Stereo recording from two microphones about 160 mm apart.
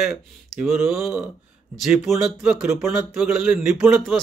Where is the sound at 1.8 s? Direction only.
Centre (ahead or behind).